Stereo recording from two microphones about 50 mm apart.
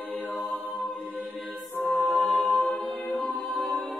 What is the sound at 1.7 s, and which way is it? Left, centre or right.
Music, left.